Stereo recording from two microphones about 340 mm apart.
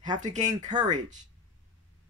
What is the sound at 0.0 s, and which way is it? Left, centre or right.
Speech, centre.